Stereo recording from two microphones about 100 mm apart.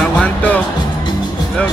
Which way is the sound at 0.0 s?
15° left (ahead or behind).